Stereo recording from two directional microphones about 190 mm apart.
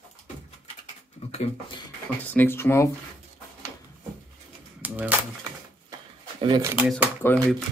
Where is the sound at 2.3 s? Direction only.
10° left (ahead or behind).